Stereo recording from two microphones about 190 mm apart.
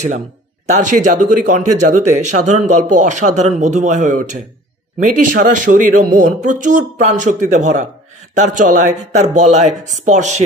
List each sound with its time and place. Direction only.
0.7 s speech: 40° right (ahead or behind)